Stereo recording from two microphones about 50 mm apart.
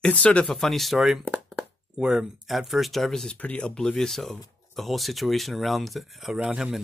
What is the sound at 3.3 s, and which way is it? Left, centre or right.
A man's voice, left.